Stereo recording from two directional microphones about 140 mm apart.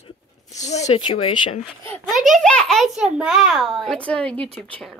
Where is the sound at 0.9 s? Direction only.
35° left (ahead or behind).